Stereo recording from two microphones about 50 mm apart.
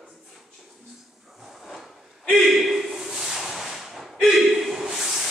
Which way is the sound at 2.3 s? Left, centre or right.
Centre.